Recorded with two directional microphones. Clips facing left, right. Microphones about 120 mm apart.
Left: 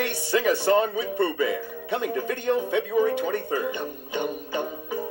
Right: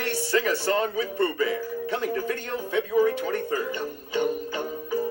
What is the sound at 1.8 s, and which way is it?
Speech, 20° left (ahead or behind).